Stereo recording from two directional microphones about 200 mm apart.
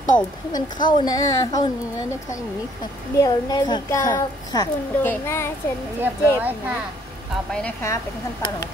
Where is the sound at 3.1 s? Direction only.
20° left (ahead or behind).